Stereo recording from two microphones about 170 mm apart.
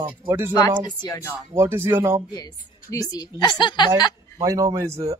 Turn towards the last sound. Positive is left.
turn(degrees=-20)  # may be behind; listen again after turning